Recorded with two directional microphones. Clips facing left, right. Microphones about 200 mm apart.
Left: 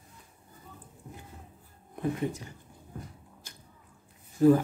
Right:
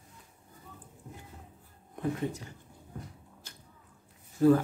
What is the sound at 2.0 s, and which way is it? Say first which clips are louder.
Speech: left 2 dB; 15° left (ahead or behind).